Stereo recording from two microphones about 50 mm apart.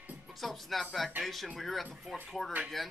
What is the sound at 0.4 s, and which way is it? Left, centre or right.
Speech, centre.